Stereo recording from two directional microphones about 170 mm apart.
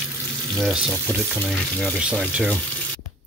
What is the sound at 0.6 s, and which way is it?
Speech, centre (ahead or behind).